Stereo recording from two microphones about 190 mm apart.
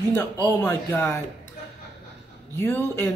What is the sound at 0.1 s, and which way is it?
A woman's voice, 10° left (ahead or behind).